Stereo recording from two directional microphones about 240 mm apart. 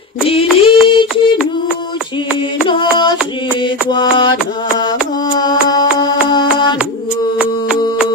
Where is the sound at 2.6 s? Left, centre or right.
Centre.